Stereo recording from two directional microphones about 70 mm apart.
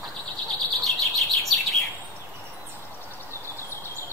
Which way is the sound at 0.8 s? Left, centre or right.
Centre.